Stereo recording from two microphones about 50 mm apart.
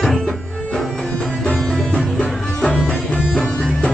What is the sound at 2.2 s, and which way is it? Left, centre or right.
Music, centre.